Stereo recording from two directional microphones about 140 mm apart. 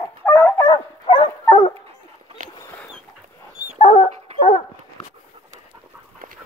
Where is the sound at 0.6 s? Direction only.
30° left (ahead or behind).